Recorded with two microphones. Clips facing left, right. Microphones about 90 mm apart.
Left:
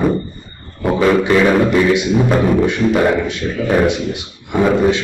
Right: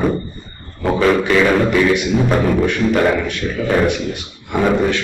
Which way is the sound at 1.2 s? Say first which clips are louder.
Left 2 dB; 15° left (ahead or behind).